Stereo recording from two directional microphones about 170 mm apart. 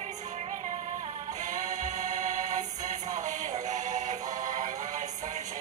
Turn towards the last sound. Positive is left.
turn(degrees=-45)  # may be behind; listen again after turning